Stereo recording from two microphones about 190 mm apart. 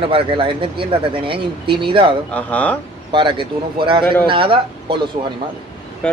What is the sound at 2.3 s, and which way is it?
Speech, 10° left (ahead or behind).